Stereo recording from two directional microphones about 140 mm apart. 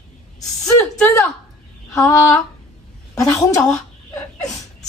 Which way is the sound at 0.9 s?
15° left (ahead or behind).